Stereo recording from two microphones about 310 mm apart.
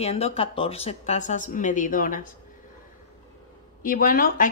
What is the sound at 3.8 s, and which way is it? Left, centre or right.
Speech, left.